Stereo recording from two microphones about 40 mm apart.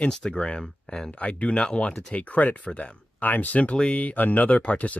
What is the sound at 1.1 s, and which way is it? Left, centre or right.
Speech, left.